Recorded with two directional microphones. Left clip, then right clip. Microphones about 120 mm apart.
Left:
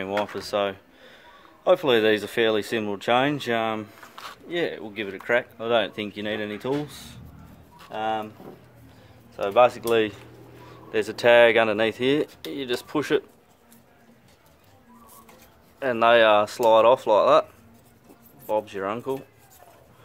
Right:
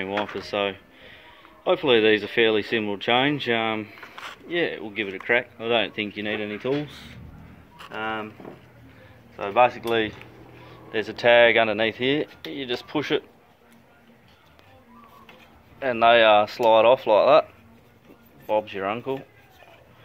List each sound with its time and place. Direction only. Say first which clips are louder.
0.2 s speech: left 1 dB; 45° left (ahead or behind); by 7.2 s 70° left (ahead or behind)
7.9 s speech: left 2 dB; 50° left (ahead or behind)
9.4 s speech: left 1 dB; 50° left (ahead or behind)
15.8 s speech: right 1 dB; 30° left (ahead or behind); by 17.5 s 15° left (ahead or behind)
18.5 s speech: right 2 dB; 20° left (ahead or behind)